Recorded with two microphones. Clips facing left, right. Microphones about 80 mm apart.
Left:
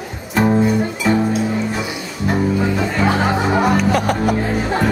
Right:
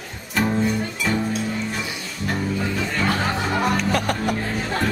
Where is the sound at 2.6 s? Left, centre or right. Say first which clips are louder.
Left 6 dB; left.